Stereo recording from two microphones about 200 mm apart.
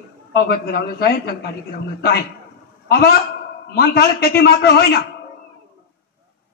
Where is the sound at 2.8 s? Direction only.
55° left (ahead or behind).